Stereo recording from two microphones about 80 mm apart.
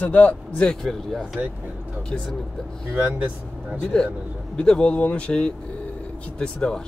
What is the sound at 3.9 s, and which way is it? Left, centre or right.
A man's voice, centre.